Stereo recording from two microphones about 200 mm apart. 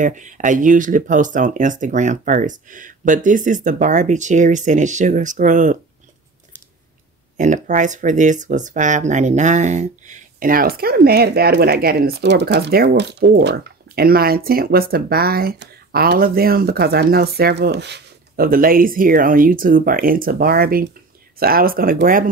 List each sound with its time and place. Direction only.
0.0 s speech: 40° right (ahead or behind)
7.3 s speech: 40° right (ahead or behind)